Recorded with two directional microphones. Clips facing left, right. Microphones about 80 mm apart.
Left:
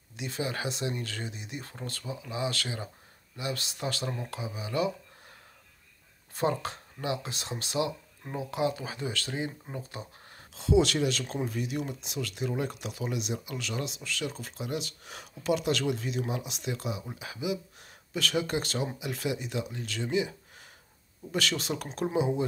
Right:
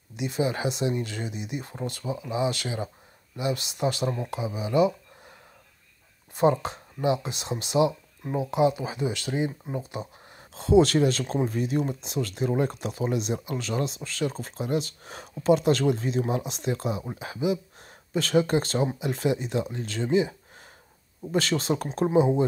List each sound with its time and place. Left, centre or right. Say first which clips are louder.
0.1 s speech: right 7 dB; centre
6.3 s speech: right 7 dB; right
9.8 s a sound: right 6 dB; centre
10.5 s speech: right 5 dB; right